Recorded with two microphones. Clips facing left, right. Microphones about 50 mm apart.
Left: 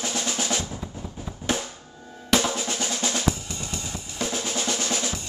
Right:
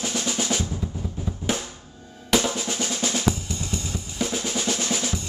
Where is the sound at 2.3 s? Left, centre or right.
Centre.